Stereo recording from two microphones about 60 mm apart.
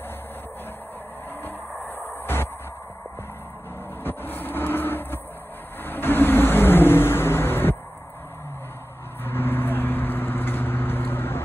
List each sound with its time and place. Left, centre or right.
1.4 s a sound: left
4.0 s vehicle: left
9.2 s vehicle: left